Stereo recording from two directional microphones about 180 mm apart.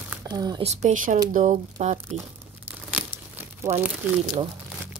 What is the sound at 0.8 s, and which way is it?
Speech, 45° right (ahead or behind).